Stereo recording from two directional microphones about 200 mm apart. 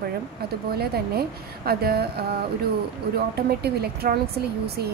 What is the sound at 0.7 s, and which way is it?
A woman's voice, 50° right (ahead or behind).